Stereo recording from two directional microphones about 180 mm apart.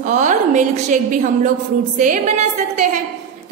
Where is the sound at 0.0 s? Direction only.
45° right (ahead or behind).